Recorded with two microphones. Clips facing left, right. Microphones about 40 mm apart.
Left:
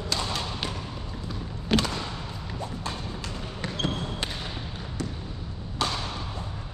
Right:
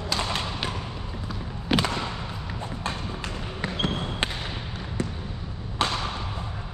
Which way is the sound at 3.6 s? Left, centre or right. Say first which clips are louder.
Right 2 dB; right.